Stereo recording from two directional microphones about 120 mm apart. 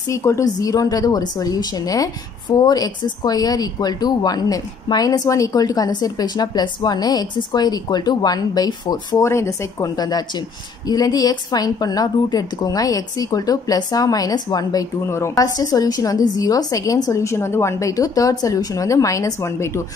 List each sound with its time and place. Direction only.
0.1 s speech: 25° left (ahead or behind)
9.2 s speech: 25° left (ahead or behind)